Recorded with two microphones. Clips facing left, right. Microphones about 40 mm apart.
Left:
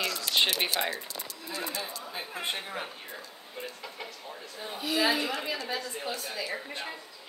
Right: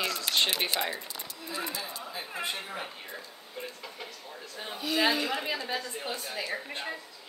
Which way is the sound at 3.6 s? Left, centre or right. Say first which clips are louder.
Left 1 dB; centre.